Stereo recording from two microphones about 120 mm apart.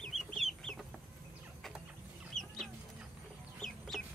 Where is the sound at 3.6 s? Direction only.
5° left (ahead or behind).